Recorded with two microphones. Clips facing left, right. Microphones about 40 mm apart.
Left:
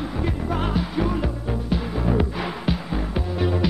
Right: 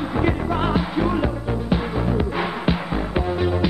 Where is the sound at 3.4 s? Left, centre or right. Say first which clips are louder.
Left 1 dB; centre.